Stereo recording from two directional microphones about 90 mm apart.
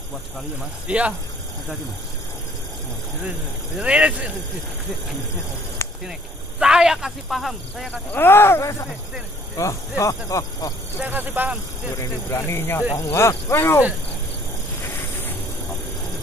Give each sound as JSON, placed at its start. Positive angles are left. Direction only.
{"t": 0.8, "sound": "speech", "side_deg": -15}
{"t": 3.3, "sound": "speech", "side_deg": -15}
{"t": 6.6, "sound": "speech", "side_deg": -5}
{"t": 7.9, "sound": "speech", "side_deg": 15}
{"t": 8.3, "sound": "speech", "side_deg": 25}
{"t": 11.0, "sound": "speech", "side_deg": -20}
{"t": 12.0, "sound": "speech", "side_deg": 35}